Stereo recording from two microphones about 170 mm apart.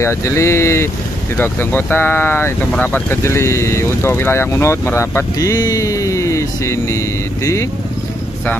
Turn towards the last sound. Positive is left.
turn(degrees=20)  # may be behind; listen again after turning